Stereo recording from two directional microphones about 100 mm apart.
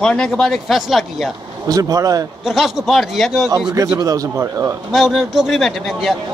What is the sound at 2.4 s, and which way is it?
Speech, centre (ahead or behind).